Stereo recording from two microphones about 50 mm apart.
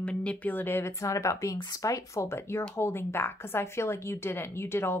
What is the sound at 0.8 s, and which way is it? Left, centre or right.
Speech, left.